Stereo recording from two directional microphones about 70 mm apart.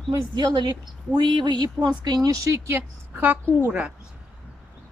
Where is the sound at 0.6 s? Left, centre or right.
Right.